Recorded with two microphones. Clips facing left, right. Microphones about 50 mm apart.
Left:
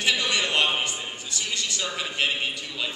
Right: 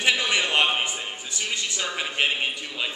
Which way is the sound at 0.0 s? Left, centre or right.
Right.